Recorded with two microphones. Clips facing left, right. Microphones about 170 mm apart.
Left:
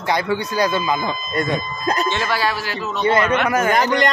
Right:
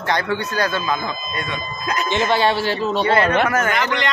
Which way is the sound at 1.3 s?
45° left (ahead or behind).